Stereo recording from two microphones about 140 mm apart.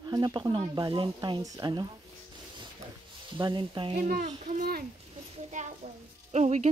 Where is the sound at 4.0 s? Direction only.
70° right (ahead or behind).